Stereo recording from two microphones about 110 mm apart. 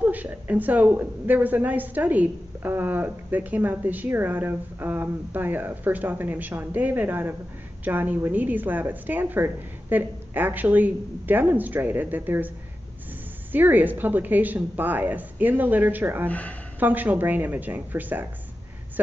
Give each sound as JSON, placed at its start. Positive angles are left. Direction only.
{"t": 0.0, "sound": "a woman's voice", "side_deg": -15}
{"t": 13.5, "sound": "a woman's voice", "side_deg": -15}
{"t": 16.3, "sound": "speech", "side_deg": 15}
{"t": 16.8, "sound": "a woman's voice", "side_deg": -15}